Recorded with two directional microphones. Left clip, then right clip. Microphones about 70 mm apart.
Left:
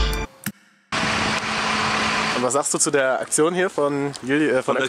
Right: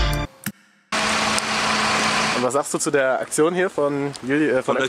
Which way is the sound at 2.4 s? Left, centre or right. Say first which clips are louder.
Even; left.